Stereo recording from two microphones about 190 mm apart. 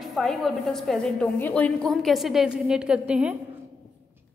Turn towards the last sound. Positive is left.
turn(degrees=-5)  # may be behind; listen again after turning